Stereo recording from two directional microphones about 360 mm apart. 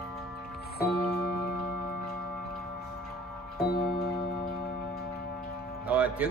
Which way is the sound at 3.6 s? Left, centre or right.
Left.